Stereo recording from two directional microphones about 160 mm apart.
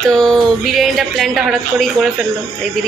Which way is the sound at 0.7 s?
Centre (ahead or behind).